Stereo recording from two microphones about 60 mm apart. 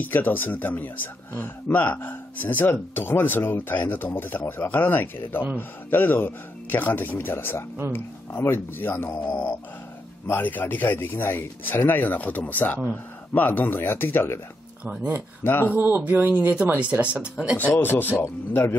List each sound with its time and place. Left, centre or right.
0.0 s a man's voice: left
15.4 s a man's voice: left
15.7 s speech: right
16.0 s speech: right
17.7 s a man's voice: left
18.1 s a man's voice: left